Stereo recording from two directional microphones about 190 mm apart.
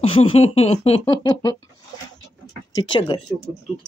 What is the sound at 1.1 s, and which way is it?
Speech, 20° left (ahead or behind).